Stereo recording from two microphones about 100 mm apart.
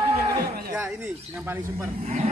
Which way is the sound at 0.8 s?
15° right (ahead or behind).